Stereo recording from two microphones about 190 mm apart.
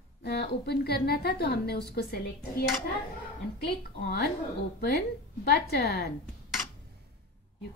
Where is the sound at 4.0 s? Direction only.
50° left (ahead or behind).